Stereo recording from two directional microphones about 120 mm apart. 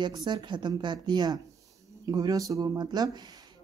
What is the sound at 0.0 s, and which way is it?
Speech, 35° right (ahead or behind).